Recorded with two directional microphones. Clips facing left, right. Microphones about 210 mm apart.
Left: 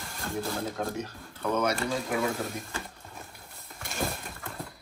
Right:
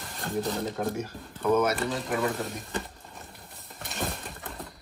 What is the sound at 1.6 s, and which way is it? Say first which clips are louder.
Speech: right 1 dB; centre (ahead or behind).